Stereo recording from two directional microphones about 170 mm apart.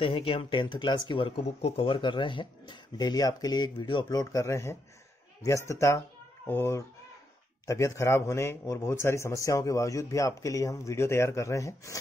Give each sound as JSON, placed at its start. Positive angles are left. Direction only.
{"t": 0.0, "sound": "a man's voice", "side_deg": 35}